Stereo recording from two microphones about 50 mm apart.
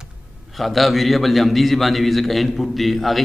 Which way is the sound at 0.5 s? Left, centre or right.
Centre.